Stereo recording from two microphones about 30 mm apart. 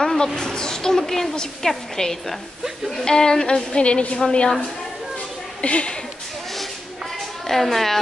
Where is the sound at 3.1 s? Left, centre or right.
Left.